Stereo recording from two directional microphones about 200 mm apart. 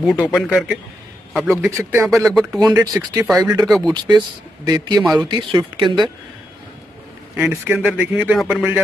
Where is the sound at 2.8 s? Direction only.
20° right (ahead or behind).